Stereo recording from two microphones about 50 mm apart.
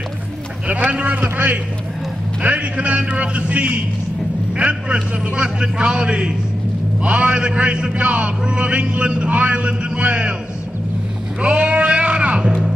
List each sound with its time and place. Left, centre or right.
0.7 s a man's voice: right
11.4 s speech: centre